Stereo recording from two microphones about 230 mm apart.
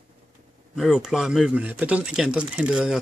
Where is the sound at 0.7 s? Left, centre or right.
Centre.